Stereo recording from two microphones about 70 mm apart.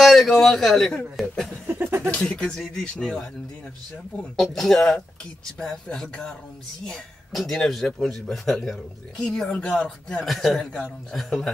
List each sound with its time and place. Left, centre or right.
0.0 s a man's voice: centre
1.7 s speech: right
2.0 s a man's voice: centre